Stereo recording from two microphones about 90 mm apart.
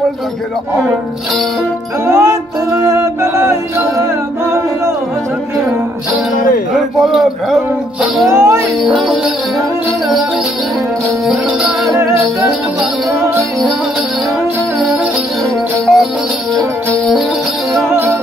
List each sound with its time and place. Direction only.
2.0 s music: 30° right (ahead or behind)
7.0 s a sound: centre (ahead or behind)
8.3 s music: 35° right (ahead or behind)
8.8 s music: centre (ahead or behind)
13.4 s music: centre (ahead or behind)
15.8 s music: centre (ahead or behind)